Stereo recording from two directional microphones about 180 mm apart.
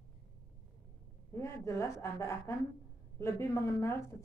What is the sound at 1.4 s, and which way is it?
Speech, 15° left (ahead or behind).